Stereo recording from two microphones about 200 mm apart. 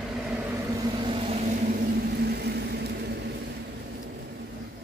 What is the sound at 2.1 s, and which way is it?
Vehicle, 55° right (ahead or behind).